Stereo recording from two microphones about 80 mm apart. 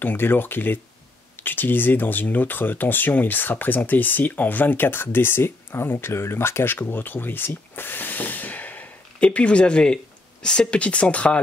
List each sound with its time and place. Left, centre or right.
0.0 s speech: left